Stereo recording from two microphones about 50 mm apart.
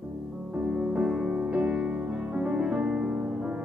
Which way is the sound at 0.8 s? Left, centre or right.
Right.